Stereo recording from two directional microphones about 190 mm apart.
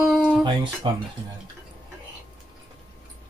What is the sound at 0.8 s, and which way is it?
Speech, 25° right (ahead or behind).